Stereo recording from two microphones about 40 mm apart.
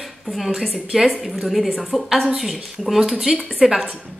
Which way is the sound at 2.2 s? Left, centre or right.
Centre.